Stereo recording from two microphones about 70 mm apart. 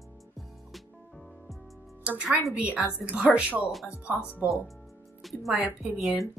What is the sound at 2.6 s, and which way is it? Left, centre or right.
A woman's voice, right.